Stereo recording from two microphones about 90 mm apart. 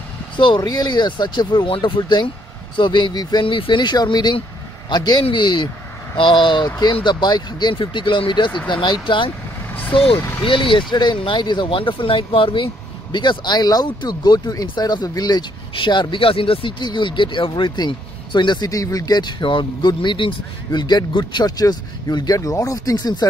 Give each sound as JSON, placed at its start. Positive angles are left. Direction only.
{"t": 0.6, "sound": "speech", "side_deg": 45}
{"t": 3.4, "sound": "speech", "side_deg": 70}
{"t": 7.7, "sound": "speech", "side_deg": 70}
{"t": 10.1, "sound": "speech", "side_deg": 25}
{"t": 10.4, "sound": "speech", "side_deg": 70}
{"t": 13.1, "sound": "speech", "side_deg": 60}
{"t": 16.8, "sound": "speech", "side_deg": 60}
{"t": 18.7, "sound": "speech", "side_deg": 40}